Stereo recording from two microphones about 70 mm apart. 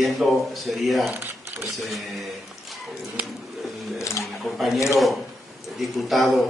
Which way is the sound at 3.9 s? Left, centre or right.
Left.